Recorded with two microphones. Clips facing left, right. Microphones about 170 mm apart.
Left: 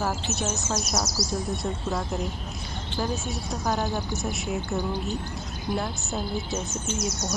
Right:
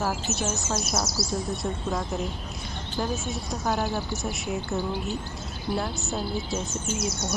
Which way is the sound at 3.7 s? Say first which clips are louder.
Right 1 dB; 15° left (ahead or behind).